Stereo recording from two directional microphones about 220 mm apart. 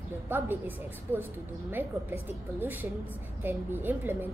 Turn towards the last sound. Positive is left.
turn(degrees=-10)  # may be behind; listen again after turning